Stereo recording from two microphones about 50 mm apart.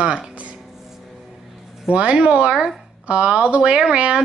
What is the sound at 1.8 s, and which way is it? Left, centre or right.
Speech, right.